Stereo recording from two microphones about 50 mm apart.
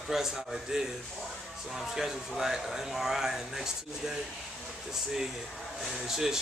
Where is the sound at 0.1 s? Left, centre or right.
Centre.